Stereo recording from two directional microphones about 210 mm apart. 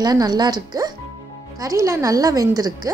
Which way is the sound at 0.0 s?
20° right (ahead or behind).